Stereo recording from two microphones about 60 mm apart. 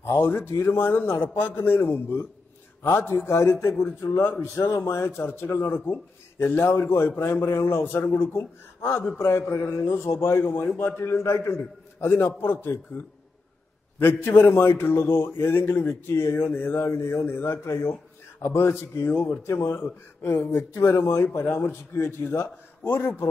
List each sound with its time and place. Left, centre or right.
0.0 s a man's voice: left
8.0 s speech: left
8.4 s a man's voice: left
13.9 s a man's voice: left